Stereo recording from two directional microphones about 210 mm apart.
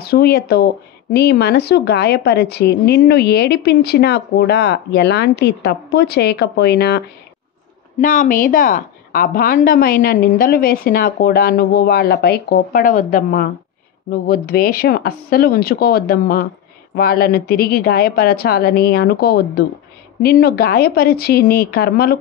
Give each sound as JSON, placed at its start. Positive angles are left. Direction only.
{"t": 0.0, "sound": "speech", "side_deg": 50}
{"t": 8.0, "sound": "speech", "side_deg": 40}